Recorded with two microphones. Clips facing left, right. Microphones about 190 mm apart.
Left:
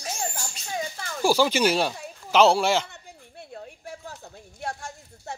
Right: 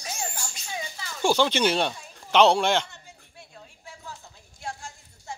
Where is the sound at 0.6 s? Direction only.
45° left (ahead or behind).